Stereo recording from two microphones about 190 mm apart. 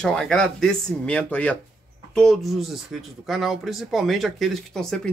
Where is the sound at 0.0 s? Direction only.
5° left (ahead or behind).